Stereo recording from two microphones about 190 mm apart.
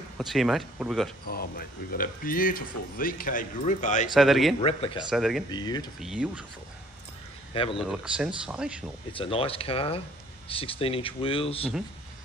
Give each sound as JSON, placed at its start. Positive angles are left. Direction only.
{"t": 0.3, "sound": "speech", "side_deg": 0}
{"t": 1.2, "sound": "speech", "side_deg": 50}
{"t": 4.1, "sound": "speech", "side_deg": 0}
{"t": 4.6, "sound": "speech", "side_deg": 30}
{"t": 5.1, "sound": "speech", "side_deg": 0}
{"t": 5.5, "sound": "speech", "side_deg": 20}
{"t": 5.9, "sound": "speech", "side_deg": -5}
{"t": 7.5, "sound": "speech", "side_deg": 30}
{"t": 7.8, "sound": "speech", "side_deg": -5}
{"t": 9.1, "sound": "speech", "side_deg": 30}